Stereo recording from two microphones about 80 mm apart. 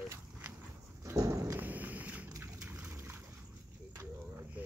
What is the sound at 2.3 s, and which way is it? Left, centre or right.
Liquid, right.